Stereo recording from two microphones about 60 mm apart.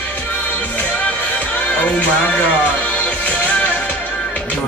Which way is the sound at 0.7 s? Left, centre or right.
Left.